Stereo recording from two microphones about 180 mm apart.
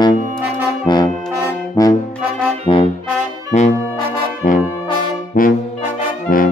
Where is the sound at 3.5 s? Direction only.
40° left (ahead or behind).